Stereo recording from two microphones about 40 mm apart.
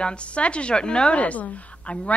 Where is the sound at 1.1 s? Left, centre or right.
Left.